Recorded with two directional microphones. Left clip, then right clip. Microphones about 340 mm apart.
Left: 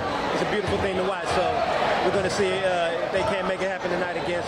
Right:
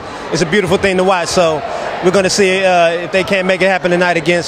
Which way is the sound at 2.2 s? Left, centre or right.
Right.